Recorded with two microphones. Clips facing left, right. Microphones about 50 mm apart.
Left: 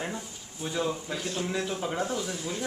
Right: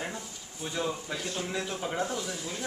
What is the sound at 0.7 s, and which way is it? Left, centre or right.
A man's voice, centre.